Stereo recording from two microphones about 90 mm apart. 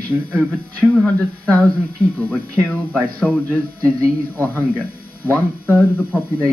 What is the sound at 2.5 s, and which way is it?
Speech, 10° right (ahead or behind).